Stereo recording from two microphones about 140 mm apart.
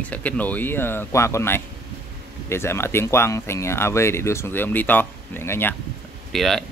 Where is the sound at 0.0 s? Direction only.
10° left (ahead or behind).